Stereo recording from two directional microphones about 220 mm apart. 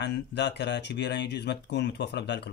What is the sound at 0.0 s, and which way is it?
Speech, 50° left (ahead or behind).